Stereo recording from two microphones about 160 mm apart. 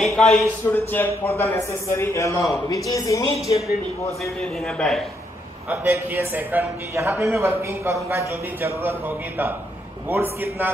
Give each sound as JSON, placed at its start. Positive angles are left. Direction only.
{"t": 0.0, "sound": "speech", "side_deg": 5}
{"t": 0.7, "sound": "a man's voice", "side_deg": 15}
{"t": 4.2, "sound": "speech", "side_deg": 5}
{"t": 5.7, "sound": "speech", "side_deg": -15}